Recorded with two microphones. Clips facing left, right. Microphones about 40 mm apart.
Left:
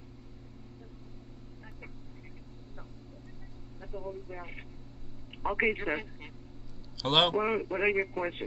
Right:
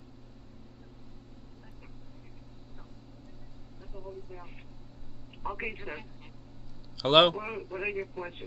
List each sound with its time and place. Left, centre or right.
3.9 s speech: left
5.4 s speech: left
7.0 s a man's voice: centre
7.3 s speech: left